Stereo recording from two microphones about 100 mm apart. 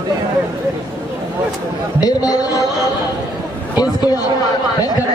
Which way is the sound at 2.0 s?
40° left (ahead or behind).